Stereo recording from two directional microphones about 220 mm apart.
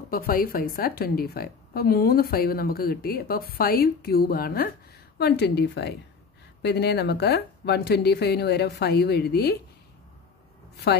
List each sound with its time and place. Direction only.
0.1 s a woman's voice: 40° left (ahead or behind)